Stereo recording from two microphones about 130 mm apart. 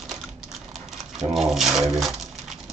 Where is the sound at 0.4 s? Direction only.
Centre (ahead or behind).